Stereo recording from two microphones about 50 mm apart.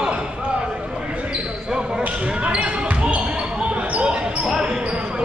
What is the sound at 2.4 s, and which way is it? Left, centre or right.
Basketball bounce, right.